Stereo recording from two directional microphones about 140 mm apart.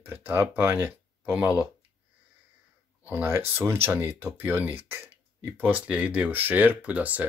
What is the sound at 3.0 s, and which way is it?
Speech, 15° right (ahead or behind).